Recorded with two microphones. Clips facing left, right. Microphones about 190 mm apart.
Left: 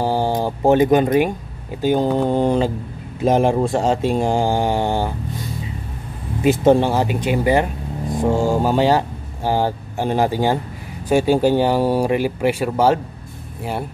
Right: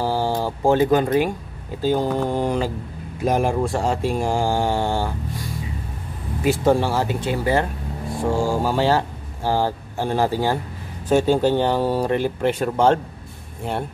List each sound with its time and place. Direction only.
0.0 s speech: 15° left (ahead or behind)